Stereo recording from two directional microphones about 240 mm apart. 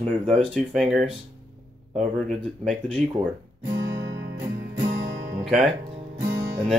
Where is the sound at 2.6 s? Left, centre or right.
Centre.